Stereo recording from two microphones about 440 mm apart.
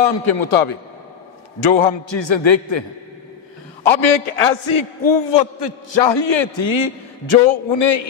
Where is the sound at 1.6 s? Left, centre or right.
Left.